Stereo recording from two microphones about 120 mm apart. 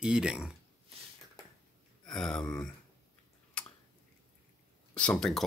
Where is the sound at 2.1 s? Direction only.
5° left (ahead or behind).